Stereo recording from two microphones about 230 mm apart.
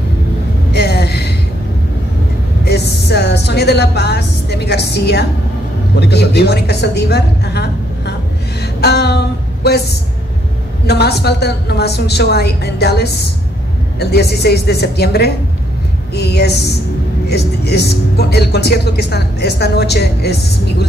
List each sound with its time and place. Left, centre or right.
0.7 s a sound: left
2.6 s speech: left
8.8 s female singing: left
10.9 s speech: left